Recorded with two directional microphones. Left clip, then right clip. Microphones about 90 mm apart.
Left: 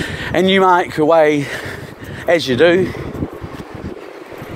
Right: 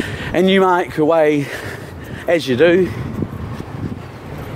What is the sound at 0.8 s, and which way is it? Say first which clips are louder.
Speech: left 2 dB; 40° right (ahead or behind).